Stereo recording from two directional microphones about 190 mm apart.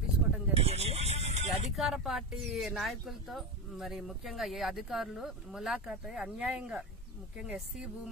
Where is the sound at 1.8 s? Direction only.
Centre (ahead or behind).